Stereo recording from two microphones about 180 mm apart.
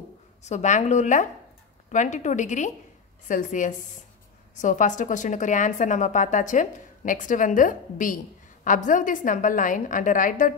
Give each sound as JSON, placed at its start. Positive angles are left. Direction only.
{"t": 0.4, "sound": "a woman's voice", "side_deg": 40}